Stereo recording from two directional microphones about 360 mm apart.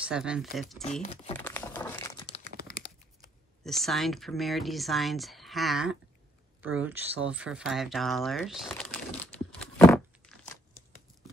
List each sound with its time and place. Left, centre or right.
0.0 s speech: centre
1.0 s speech: centre
1.4 s crumpling: centre; by 2.8 s left
3.6 s speech: centre